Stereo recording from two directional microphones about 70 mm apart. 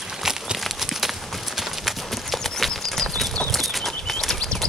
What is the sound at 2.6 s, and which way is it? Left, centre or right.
Horse, centre.